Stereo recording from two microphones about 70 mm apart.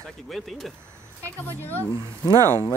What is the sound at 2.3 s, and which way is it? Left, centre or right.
Speech, right.